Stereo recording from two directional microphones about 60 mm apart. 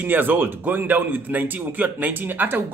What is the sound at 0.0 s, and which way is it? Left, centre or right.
Speech, right.